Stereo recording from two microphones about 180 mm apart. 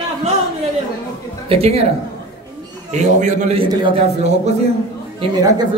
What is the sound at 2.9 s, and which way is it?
Speech, 40° right (ahead or behind).